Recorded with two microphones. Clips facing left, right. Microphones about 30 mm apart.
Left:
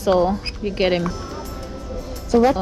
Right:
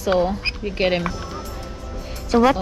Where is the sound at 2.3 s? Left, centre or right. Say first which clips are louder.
Even; right.